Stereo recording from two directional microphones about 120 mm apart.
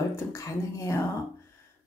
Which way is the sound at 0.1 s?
25° left (ahead or behind).